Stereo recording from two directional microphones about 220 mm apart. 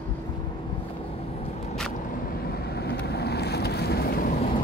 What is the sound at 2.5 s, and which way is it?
Boat, 45° left (ahead or behind).